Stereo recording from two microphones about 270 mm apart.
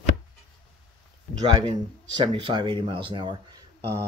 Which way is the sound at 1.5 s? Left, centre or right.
Centre.